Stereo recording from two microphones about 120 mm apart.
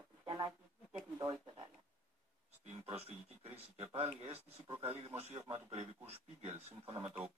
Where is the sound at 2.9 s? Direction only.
55° right (ahead or behind).